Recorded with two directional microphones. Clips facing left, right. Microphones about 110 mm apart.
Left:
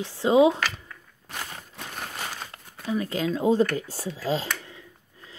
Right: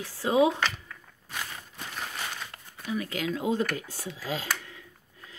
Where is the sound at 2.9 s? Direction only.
30° left (ahead or behind).